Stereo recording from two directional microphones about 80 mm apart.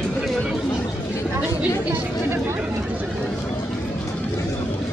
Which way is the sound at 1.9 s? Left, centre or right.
Right.